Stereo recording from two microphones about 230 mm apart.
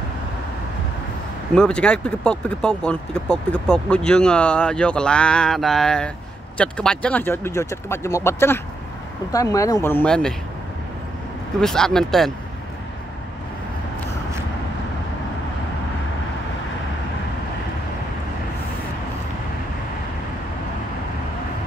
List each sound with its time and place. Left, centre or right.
1.5 s speech: centre
11.6 s speech: centre